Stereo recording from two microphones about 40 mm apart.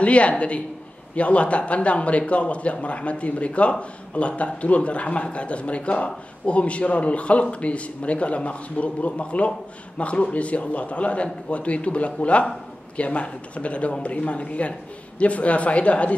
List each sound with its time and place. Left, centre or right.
0.0 s speech: left